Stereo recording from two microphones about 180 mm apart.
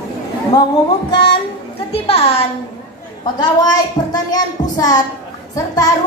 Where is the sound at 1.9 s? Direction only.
35° left (ahead or behind).